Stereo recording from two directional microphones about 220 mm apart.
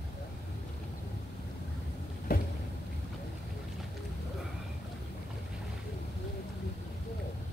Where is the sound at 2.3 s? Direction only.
40° left (ahead or behind).